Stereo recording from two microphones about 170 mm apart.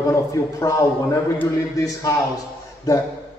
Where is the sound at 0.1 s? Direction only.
20° left (ahead or behind).